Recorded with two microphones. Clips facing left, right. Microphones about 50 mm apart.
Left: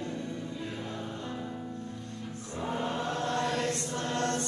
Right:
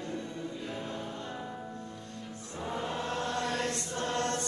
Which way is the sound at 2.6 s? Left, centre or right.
Left.